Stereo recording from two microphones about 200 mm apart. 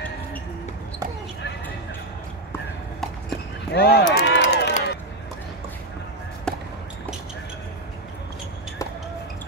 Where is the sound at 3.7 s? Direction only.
55° left (ahead or behind).